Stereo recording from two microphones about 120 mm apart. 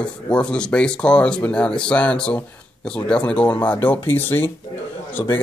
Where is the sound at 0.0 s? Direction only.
10° left (ahead or behind).